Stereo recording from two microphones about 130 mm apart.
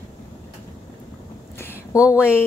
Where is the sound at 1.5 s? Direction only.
20° left (ahead or behind).